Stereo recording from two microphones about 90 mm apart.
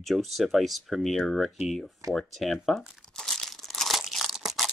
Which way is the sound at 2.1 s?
Centre (ahead or behind).